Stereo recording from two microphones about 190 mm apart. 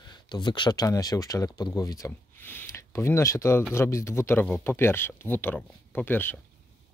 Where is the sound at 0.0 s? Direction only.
25° left (ahead or behind).